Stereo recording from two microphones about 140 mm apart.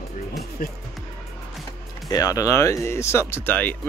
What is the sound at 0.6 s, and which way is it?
Speech, 85° left.